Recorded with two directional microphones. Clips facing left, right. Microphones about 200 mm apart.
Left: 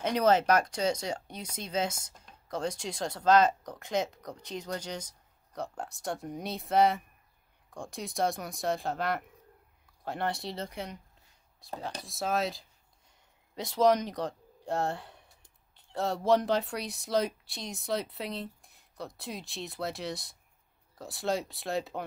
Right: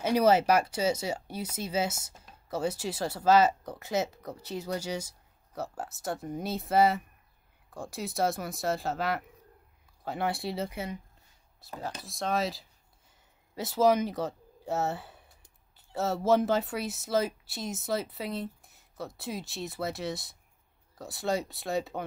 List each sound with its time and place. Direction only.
0.0 s speech: 10° right (ahead or behind)